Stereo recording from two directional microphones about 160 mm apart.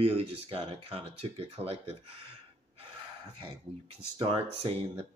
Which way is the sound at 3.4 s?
35° right (ahead or behind).